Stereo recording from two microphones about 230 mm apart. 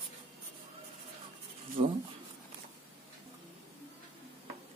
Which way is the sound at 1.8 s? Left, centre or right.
Right.